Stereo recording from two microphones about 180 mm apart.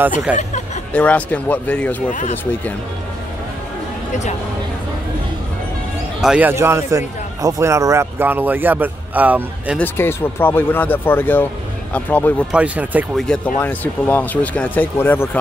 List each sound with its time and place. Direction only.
0.9 s speech: 10° left (ahead or behind)
2.0 s speech: 45° left (ahead or behind)
4.1 s speech: 40° left (ahead or behind)
6.2 s a man's voice: 5° right (ahead or behind)
9.8 s speech: 10° left (ahead or behind)
12.5 s a man's voice: 10° right (ahead or behind)
13.6 s speech: 10° left (ahead or behind)